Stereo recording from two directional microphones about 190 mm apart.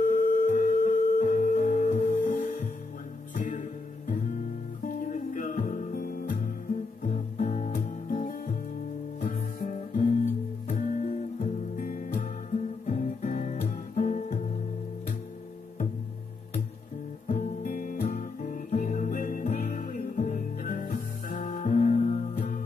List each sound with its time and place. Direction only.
0.0 s music: 45° left (ahead or behind)
4.8 s music: 40° left (ahead or behind)
10.7 s guitar: 40° left (ahead or behind)
17.3 s guitar: 45° left (ahead or behind)